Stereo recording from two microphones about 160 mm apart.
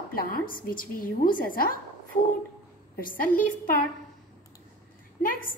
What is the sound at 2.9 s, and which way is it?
Speech, 60° left (ahead or behind).